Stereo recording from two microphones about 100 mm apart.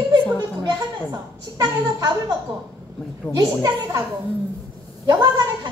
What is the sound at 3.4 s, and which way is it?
Speech, 40° right (ahead or behind).